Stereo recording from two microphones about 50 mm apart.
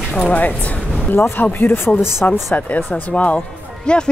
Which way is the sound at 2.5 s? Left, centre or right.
Left.